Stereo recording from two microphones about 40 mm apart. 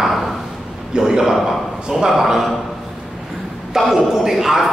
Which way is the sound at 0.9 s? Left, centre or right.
Centre.